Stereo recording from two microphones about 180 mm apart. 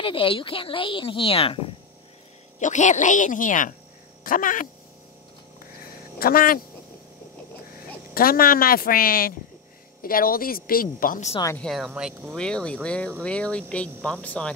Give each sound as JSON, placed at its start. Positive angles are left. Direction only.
{"t": 0.0, "sound": "speech", "side_deg": 30}
{"t": 2.6, "sound": "speech", "side_deg": 45}
{"t": 5.6, "sound": "a sound", "side_deg": 55}
{"t": 8.1, "sound": "a woman's voice", "side_deg": 55}
{"t": 11.5, "sound": "speech", "side_deg": 0}
{"t": 12.4, "sound": "speech", "side_deg": 5}